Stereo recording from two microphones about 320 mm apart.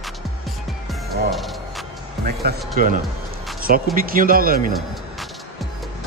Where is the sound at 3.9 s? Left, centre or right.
Right.